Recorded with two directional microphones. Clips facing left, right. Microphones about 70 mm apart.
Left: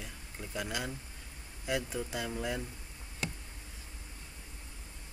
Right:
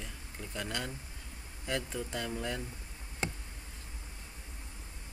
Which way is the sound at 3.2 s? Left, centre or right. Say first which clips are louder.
Right 2 dB; right.